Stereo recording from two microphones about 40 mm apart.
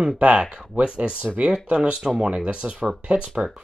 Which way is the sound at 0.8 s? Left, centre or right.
Right.